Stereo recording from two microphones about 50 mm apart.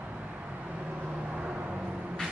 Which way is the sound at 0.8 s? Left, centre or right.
Right.